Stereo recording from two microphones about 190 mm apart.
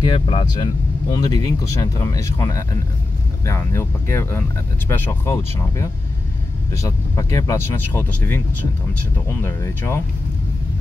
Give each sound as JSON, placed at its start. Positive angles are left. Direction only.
{"t": 0.0, "sound": "speech", "side_deg": 30}
{"t": 9.4, "sound": "speech", "side_deg": 15}